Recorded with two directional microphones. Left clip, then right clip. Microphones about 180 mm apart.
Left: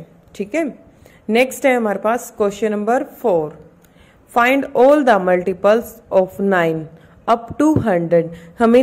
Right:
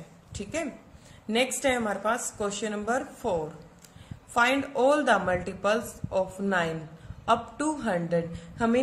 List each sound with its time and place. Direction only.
0.3 s a woman's voice: 40° left (ahead or behind)